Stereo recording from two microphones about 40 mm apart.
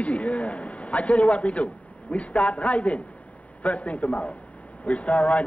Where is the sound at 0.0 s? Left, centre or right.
Left.